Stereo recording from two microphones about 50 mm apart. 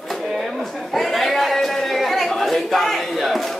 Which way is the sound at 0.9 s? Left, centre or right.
Centre.